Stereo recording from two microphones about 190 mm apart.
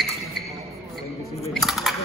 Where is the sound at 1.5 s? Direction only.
Centre (ahead or behind).